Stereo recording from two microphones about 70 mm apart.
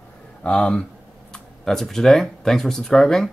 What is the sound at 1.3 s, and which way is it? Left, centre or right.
Speech, centre.